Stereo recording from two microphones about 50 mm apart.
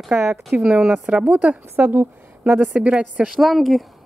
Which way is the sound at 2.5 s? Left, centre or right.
Right.